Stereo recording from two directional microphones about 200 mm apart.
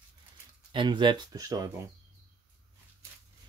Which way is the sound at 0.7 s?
25° right (ahead or behind).